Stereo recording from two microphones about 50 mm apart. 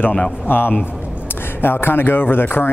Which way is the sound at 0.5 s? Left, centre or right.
Left.